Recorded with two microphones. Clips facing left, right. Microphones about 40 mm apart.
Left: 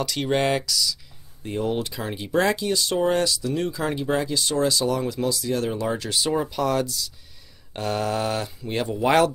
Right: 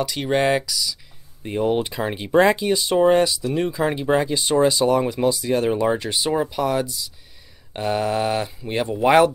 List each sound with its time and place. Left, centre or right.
0.0 s speech: centre